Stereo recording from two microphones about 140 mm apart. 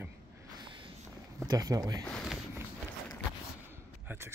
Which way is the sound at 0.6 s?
35° right (ahead or behind).